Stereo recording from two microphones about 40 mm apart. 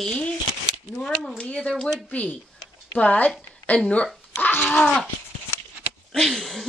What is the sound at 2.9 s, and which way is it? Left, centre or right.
Speech, left.